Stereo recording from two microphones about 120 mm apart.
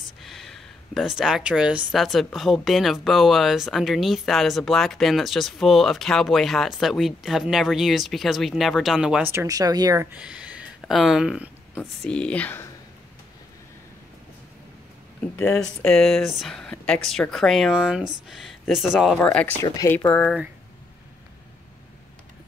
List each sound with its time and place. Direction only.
0.2 s speech: centre (ahead or behind)
9.3 s speech: 20° right (ahead or behind)
9.6 s speech: 30° right (ahead or behind)
10.1 s speech: 10° right (ahead or behind)
12.0 s speech: 10° left (ahead or behind)
15.3 s speech: 20° left (ahead or behind)
15.6 s speech: 5° left (ahead or behind)
19.2 s speech: 10° left (ahead or behind)
19.8 s speech: 25° left (ahead or behind)